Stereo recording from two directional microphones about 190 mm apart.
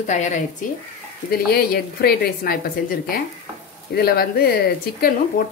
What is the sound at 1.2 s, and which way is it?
Speech, 55° left (ahead or behind).